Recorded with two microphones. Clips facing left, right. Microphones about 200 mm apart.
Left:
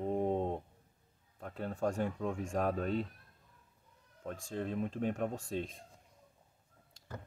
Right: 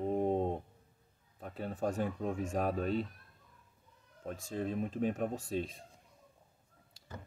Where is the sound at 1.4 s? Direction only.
15° right (ahead or behind).